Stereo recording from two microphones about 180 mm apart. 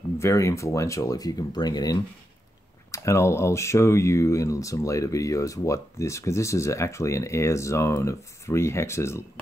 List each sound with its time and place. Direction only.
0.2 s speech: 15° left (ahead or behind)